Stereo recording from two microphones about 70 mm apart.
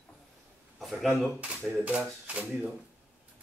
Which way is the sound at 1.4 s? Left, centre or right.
Centre.